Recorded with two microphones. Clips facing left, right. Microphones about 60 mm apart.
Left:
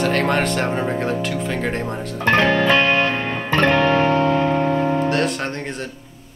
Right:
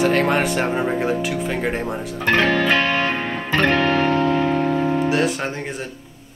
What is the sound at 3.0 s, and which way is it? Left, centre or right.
Music, centre.